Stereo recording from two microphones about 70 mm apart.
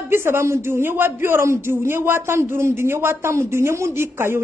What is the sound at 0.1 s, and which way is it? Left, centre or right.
A man's voice, right.